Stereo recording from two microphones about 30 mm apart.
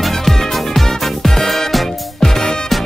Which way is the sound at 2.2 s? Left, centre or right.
Centre.